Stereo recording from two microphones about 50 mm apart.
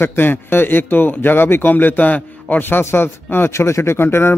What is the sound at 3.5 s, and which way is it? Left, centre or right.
Speech, left.